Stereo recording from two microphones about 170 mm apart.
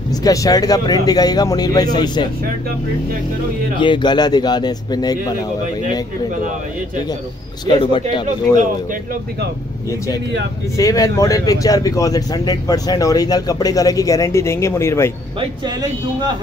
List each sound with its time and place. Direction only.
0.1 s speech: 20° left (ahead or behind)
3.8 s speech: 25° left (ahead or behind)
7.6 s speech: 30° left (ahead or behind)
10.8 s speech: 20° left (ahead or behind)